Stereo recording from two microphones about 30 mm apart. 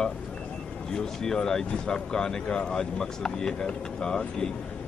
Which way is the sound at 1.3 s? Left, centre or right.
Left.